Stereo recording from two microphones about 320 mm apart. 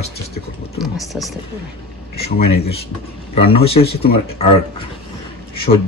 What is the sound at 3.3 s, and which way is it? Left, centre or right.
Speech, centre.